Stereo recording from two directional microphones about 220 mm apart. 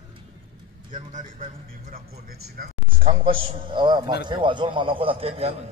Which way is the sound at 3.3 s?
25° right (ahead or behind).